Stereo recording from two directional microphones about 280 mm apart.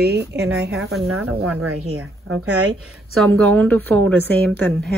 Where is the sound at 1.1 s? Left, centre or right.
Right.